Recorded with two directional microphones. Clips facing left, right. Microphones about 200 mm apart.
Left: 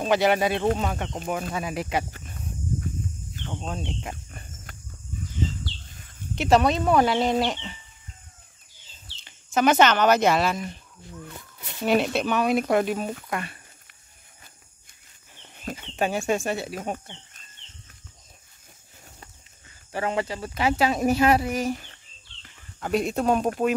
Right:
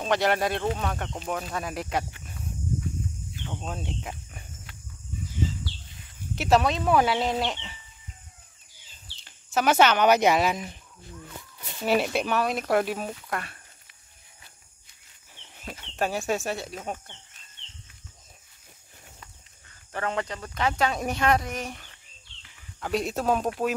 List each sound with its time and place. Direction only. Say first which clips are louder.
0.0 s speech: left 3 dB; 5° left (ahead or behind)
3.3 s speech: left 3 dB; 10° right (ahead or behind)
4.7 s a sound: left 3 dB; 45° left (ahead or behind)
6.3 s speech: left 2 dB; centre (ahead or behind)
9.2 s speech: left 4 dB; 5° right (ahead or behind)
11.8 s speech: left 2 dB; 5° right (ahead or behind)
15.7 s speech: left 2 dB; centre (ahead or behind)
19.9 s speech: left 3 dB; 10° left (ahead or behind)